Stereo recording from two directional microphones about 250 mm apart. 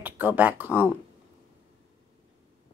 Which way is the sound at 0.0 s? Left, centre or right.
Centre.